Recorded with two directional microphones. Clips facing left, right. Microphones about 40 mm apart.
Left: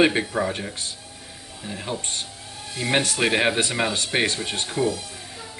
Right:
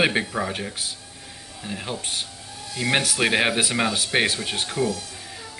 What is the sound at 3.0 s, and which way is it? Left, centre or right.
Speech, centre.